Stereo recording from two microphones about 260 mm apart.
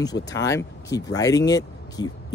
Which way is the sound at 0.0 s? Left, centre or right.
Centre.